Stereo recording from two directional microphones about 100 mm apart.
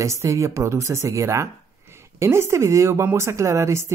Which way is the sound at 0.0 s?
30° right (ahead or behind).